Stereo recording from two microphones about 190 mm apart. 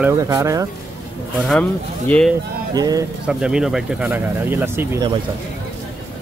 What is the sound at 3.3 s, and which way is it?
Speech, 5° right (ahead or behind).